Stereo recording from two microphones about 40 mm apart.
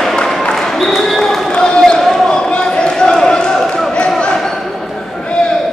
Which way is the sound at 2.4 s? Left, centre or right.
Left.